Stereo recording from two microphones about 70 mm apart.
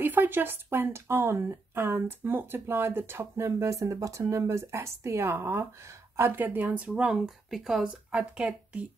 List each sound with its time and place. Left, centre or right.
0.0 s a woman's voice: right
6.4 s speech: right
6.9 s speech: centre
8.1 s speech: centre